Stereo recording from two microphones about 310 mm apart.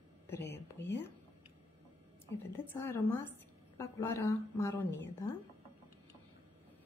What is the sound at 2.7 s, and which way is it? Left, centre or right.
A woman's voice, centre.